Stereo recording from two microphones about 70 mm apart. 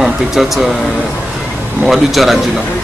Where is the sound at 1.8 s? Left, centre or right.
Centre.